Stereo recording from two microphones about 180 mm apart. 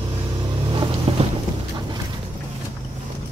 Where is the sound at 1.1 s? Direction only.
30° right (ahead or behind).